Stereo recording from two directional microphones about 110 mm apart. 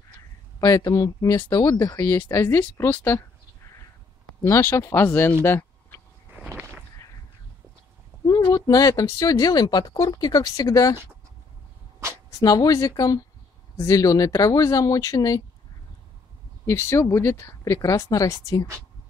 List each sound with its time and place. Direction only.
0.6 s speech: 35° left (ahead or behind)
1.3 s speech: 45° left (ahead or behind); by 2.6 s 30° left (ahead or behind)
2.6 s speech: 15° left (ahead or behind)
4.4 s speech: 20° left (ahead or behind)
5.4 s a sound: 20° left (ahead or behind)
8.3 s a sound: 35° left (ahead or behind)
9.2 s speech: 35° left (ahead or behind)
12.4 s speech: 35° left (ahead or behind)
16.6 s speech: 25° left (ahead or behind)